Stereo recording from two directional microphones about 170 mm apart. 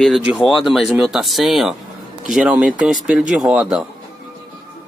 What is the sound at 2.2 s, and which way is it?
Dishes, 5° right (ahead or behind).